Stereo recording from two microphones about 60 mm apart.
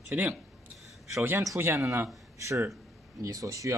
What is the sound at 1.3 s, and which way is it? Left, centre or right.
Speech, right.